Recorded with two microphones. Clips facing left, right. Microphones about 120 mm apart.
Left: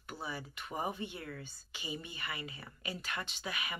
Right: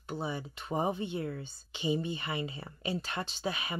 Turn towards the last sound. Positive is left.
turn(degrees=-30)  # may be behind; listen again after turning